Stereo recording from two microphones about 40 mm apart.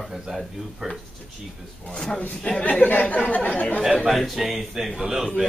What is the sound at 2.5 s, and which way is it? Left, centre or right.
Speech, left.